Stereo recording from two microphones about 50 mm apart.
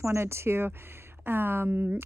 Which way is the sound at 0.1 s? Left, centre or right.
Right.